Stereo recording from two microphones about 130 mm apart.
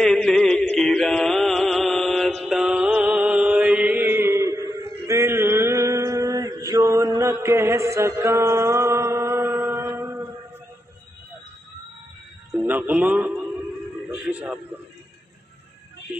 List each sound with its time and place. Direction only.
0.0 s music: 5° left (ahead or behind); by 10.2 s 20° right (ahead or behind)
12.6 s music: 15° right (ahead or behind)
14.0 s a sound: 5° right (ahead or behind)